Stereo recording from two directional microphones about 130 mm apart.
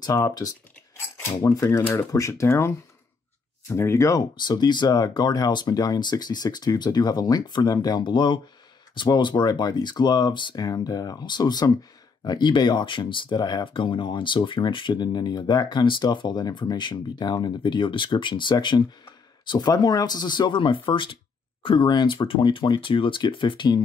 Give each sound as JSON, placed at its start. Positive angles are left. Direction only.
{"t": 0.0, "sound": "speech", "side_deg": 30}
{"t": 4.4, "sound": "speech", "side_deg": 35}